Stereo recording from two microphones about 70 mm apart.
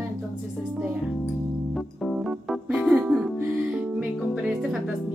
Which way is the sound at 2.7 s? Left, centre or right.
Centre.